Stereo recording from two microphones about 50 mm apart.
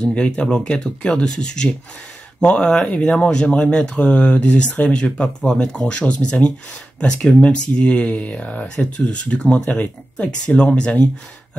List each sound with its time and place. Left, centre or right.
0.0 s speech: left